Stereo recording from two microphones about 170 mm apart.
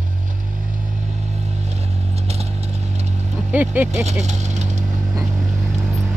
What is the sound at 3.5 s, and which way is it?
Vehicle, 10° right (ahead or behind).